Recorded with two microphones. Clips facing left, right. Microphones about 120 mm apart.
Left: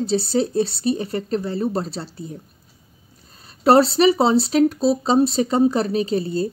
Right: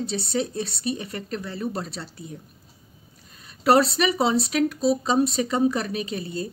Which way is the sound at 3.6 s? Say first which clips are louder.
Left 5 dB; 30° left (ahead or behind).